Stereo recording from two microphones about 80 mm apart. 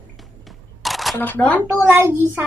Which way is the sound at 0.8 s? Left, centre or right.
Centre.